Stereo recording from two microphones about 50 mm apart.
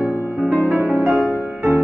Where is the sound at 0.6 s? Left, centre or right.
Right.